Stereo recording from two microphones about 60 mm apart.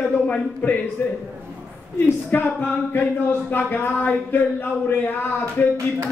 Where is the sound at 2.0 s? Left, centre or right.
Left.